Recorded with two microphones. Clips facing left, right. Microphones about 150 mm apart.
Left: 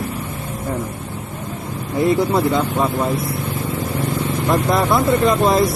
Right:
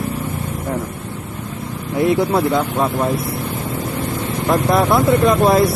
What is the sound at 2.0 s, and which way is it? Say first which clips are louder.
Speech: right 1 dB; 60° right (ahead or behind).